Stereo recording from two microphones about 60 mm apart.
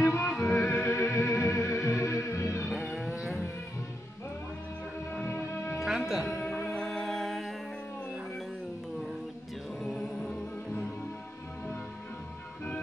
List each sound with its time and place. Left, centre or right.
0.2 s music: centre
0.6 s music: left
0.8 s music: left
2.7 s livestock: left
5.2 s music: left
5.9 s music: centre
6.5 s music: centre
9.8 s a capella: centre